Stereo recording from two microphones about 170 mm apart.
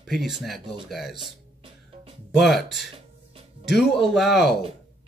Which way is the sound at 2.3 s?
Centre (ahead or behind).